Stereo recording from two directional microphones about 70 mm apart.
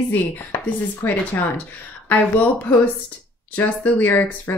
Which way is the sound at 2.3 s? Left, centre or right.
Left.